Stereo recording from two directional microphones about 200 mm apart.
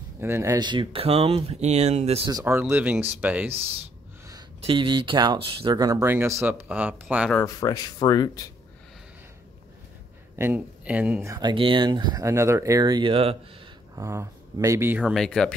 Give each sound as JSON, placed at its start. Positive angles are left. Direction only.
{"t": 0.2, "sound": "speech", "side_deg": -15}
{"t": 2.3, "sound": "speech", "side_deg": -10}
{"t": 4.3, "sound": "speech", "side_deg": -25}
{"t": 7.3, "sound": "speech", "side_deg": 20}
{"t": 10.3, "sound": "speech", "side_deg": -10}
{"t": 13.9, "sound": "speech", "side_deg": -15}